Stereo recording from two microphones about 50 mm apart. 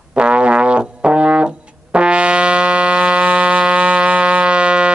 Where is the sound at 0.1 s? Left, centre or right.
Right.